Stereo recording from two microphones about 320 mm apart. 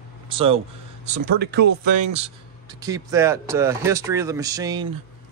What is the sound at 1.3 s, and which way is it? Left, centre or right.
Speech, right.